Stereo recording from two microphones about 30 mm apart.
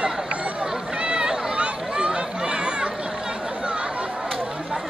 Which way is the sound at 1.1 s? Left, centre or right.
Right.